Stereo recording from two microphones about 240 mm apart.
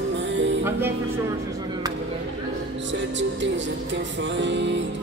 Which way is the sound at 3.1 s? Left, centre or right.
Right.